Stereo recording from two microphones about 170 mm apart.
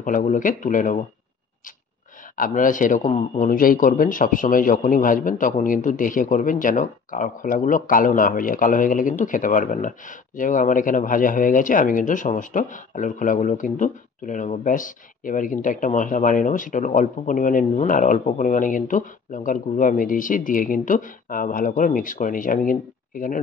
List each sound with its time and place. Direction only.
0.0 s speech: 50° left (ahead or behind)
2.3 s speech: 55° left (ahead or behind)